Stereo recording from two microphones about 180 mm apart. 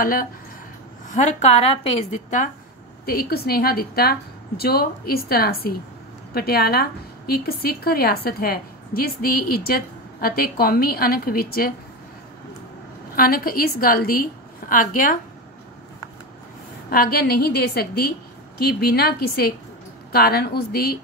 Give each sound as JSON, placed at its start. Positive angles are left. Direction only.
{"t": 0.0, "sound": "a woman's voice", "side_deg": 50}
{"t": 1.1, "sound": "a woman's voice", "side_deg": 40}
{"t": 3.1, "sound": "a woman's voice", "side_deg": 55}
{"t": 13.1, "sound": "a woman's voice", "side_deg": 55}
{"t": 16.9, "sound": "a woman's voice", "side_deg": 55}